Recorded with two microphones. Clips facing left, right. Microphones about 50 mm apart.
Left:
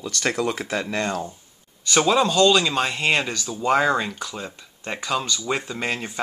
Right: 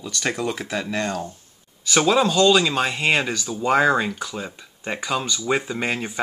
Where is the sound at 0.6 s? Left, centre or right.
Centre.